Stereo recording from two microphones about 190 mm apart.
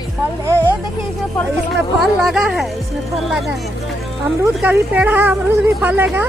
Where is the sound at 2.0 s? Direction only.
Centre (ahead or behind).